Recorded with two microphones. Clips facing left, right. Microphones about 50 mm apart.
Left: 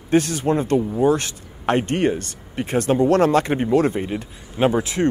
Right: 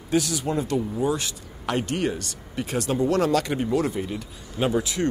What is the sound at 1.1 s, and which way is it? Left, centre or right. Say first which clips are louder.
Speech: left 6 dB; left.